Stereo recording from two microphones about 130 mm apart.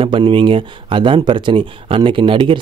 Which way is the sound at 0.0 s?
40° right (ahead or behind).